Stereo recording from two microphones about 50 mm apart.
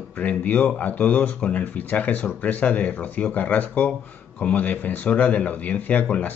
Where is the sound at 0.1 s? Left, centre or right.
Left.